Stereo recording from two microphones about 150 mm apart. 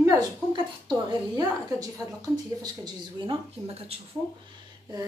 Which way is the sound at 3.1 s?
35° right (ahead or behind).